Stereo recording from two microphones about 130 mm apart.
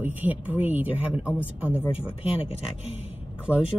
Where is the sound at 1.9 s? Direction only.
45° left (ahead or behind).